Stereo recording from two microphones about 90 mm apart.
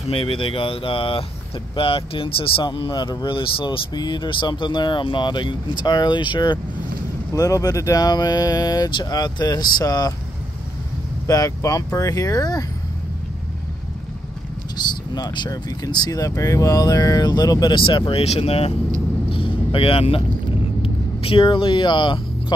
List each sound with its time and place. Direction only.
0.1 s speech: 85° left
3.9 s speech: 55° left (ahead or behind)
7.3 s speech: 40° left (ahead or behind)
11.2 s speech: 40° left (ahead or behind)
14.9 s speech: 55° left (ahead or behind)
17.7 s speech: 65° left (ahead or behind); by 18.7 s 90° left
19.2 s vehicle: 85° left
20.8 s speech: 90° left; by 22.2 s 65° left (ahead or behind)